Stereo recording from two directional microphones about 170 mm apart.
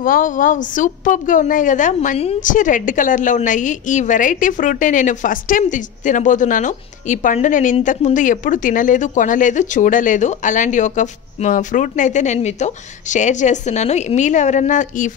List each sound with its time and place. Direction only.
0.0 s speech: 55° left (ahead or behind); by 2.3 s 35° left (ahead or behind)
2.4 s speech: 50° left (ahead or behind)